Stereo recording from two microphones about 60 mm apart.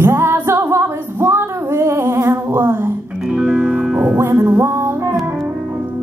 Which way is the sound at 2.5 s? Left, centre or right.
Right.